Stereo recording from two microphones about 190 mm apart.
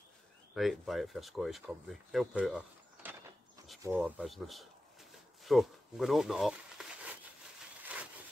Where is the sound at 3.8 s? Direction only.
10° right (ahead or behind).